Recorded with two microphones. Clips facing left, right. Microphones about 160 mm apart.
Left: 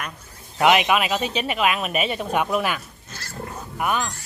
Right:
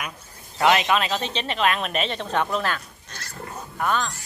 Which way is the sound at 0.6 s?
15° left (ahead or behind).